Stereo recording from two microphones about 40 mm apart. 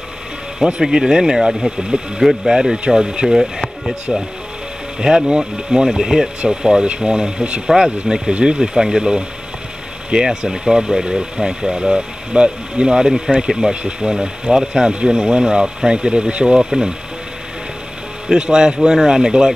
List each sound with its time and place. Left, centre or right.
0.8 s speech: centre
2.2 s speech: centre
2.5 s speech: centre
4.1 s speech: centre
5.9 s speech: centre
7.6 s speech: centre
8.3 s speech: right
16.5 s speech: centre
18.3 s speech: centre